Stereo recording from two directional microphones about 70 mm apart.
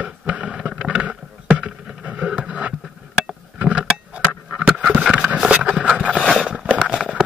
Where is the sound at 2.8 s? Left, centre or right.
Centre.